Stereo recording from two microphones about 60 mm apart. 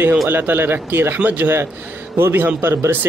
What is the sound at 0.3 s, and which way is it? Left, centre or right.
A man's voice, right.